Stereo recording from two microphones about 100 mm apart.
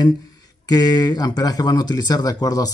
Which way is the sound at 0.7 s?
40° left (ahead or behind).